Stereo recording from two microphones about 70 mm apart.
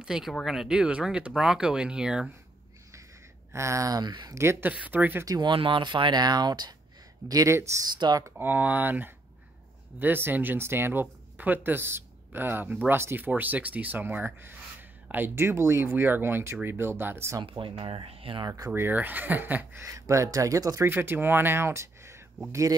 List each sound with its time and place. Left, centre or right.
0.0 s speech: centre
3.5 s speech: right
4.0 s speech: right
4.4 s speech: right
4.7 s speech: right
5.2 s speech: right
7.2 s speech: right
7.8 s speech: right
8.4 s speech: right
18.8 s speech: right
19.8 s speech: right
20.8 s speech: right